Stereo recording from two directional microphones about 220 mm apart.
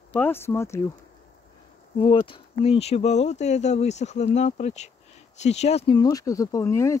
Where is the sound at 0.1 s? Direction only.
10° left (ahead or behind).